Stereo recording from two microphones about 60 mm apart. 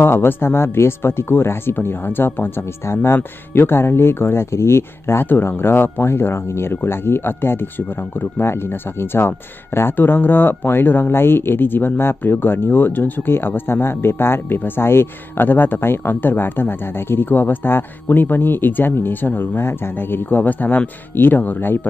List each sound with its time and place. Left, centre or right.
0.0 s speech: left
20.2 s speech: left